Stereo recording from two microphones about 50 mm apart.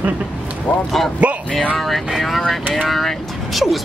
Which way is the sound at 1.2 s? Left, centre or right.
Right.